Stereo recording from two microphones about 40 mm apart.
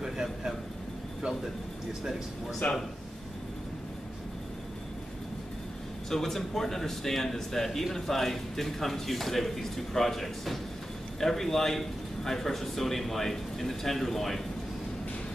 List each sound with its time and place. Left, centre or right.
0.0 s a sound: centre
2.6 s speech: left
6.0 s a man's voice: centre